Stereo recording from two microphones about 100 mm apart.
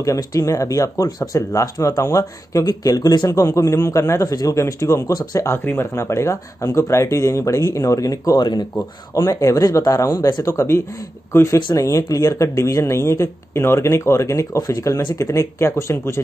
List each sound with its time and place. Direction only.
0.0 s speech: 35° left (ahead or behind)
5.6 s speech: 20° left (ahead or behind)
8.4 s speech: 50° left (ahead or behind)
9.1 s speech: 35° left (ahead or behind)